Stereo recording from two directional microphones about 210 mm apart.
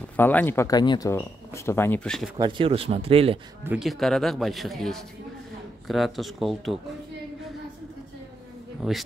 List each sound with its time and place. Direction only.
0.1 s speech: 5° left (ahead or behind)
2.3 s speech: 20° right (ahead or behind)
3.6 s speech: 5° right (ahead or behind)
8.8 s speech: 5° right (ahead or behind)